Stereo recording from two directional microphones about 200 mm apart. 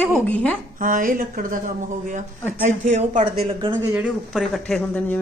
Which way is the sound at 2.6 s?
35° right (ahead or behind).